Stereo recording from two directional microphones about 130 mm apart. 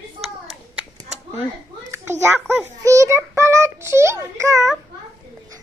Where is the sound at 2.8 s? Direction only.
25° right (ahead or behind).